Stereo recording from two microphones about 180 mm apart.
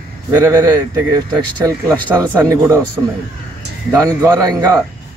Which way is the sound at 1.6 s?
20° right (ahead or behind).